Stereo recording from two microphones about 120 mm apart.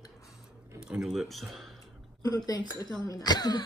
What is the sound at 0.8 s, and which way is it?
Speech, 5° right (ahead or behind).